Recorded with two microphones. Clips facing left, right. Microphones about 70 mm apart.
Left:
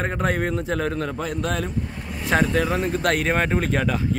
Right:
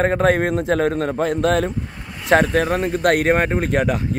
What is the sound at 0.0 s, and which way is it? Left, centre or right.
A man's voice, right.